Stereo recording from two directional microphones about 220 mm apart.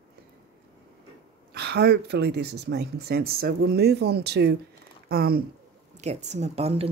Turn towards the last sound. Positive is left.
turn(degrees=-25)  # may be behind; listen again after turning